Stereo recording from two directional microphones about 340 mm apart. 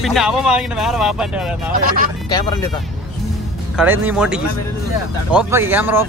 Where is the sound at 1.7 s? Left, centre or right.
Right.